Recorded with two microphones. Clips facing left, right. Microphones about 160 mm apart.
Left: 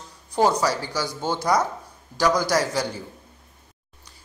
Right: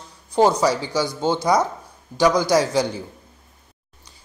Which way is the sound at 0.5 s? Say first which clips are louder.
Right 3 dB; 15° right (ahead or behind).